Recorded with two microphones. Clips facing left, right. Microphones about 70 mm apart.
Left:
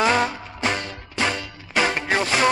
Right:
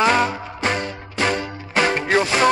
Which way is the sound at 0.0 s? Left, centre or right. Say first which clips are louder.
Right 2 dB; right.